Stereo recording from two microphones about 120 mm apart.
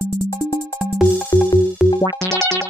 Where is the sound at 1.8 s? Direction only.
5° right (ahead or behind).